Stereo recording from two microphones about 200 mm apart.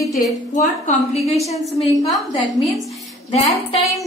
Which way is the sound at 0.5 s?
35° left (ahead or behind).